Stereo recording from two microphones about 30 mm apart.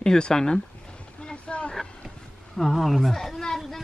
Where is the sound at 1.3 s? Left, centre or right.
Left.